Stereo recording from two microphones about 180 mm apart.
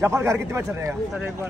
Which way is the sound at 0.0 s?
15° right (ahead or behind).